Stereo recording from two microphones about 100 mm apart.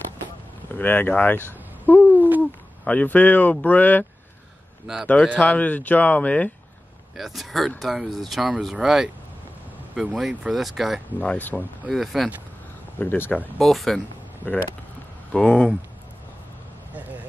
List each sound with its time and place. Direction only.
0.7 s speech: 20° left (ahead or behind)
5.0 s speech: 15° left (ahead or behind)
7.2 s speech: centre (ahead or behind)
11.1 s speech: 15° left (ahead or behind)
11.9 s speech: centre (ahead or behind)
13.0 s speech: 15° left (ahead or behind)
13.6 s speech: centre (ahead or behind)
14.4 s speech: 15° left (ahead or behind)